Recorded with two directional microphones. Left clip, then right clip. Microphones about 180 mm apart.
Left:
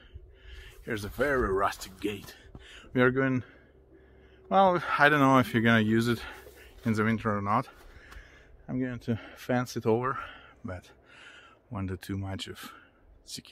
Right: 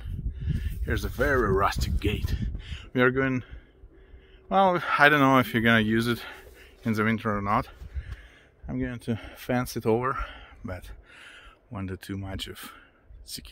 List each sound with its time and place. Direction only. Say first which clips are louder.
0.4 s speech: right 8 dB; 35° right (ahead or behind)
8.6 s speech: right 1 dB; 35° right (ahead or behind)
10.7 s speech: right 3 dB; 15° right (ahead or behind)